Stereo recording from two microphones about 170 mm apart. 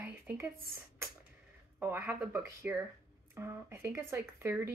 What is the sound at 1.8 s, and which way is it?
Speech, 15° right (ahead or behind).